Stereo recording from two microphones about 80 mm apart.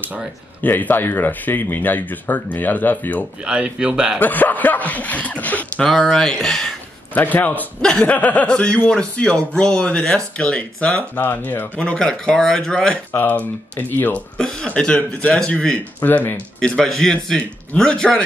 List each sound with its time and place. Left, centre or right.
0.6 s speech: left
3.4 s speech: centre
4.2 s speech: left
5.8 s speech: centre
7.2 s speech: left
11.8 s speech: centre
13.1 s speech: left
16.0 s speech: left
16.5 s speech: centre